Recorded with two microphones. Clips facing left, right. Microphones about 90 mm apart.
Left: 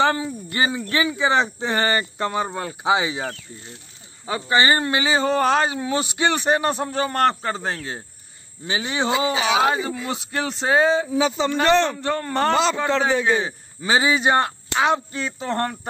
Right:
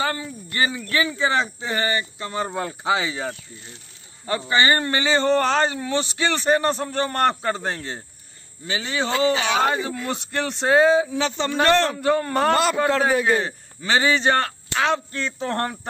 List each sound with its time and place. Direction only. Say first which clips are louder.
0.2 s speech: left 1 dB; 20° left (ahead or behind)
1.7 s speech: left 3 dB; 35° left (ahead or behind)
2.8 s speech: left 3 dB; 20° left (ahead or behind)
4.3 s a man's voice: left 1 dB; 10° left (ahead or behind)
8.6 s a man's voice: left 2 dB; 20° left (ahead or behind); by 13.5 s 5° right (ahead or behind)
13.5 s a man's voice: left 1 dB; 10° left (ahead or behind)